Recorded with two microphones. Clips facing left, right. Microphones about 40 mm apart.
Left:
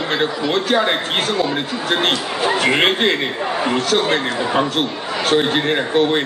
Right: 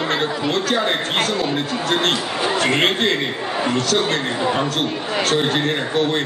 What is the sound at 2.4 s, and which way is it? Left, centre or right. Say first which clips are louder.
Speech: left 3 dB; centre.